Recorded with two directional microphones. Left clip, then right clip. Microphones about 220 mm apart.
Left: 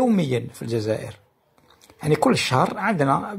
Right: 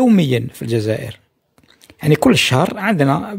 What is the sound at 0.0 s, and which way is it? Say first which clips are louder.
Speech: right 6 dB; 45° right (ahead or behind).